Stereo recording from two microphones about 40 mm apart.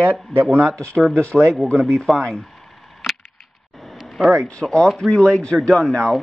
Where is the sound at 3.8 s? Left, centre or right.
Centre.